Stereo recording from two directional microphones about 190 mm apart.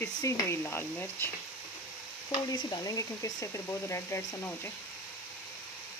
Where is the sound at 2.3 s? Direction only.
25° left (ahead or behind).